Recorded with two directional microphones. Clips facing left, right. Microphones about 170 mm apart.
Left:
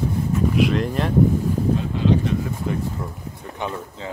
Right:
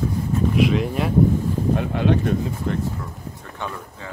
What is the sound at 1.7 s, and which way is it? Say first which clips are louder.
Speech: right 1 dB; 60° right (ahead or behind).